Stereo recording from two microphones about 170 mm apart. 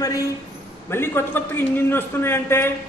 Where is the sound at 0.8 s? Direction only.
15° left (ahead or behind).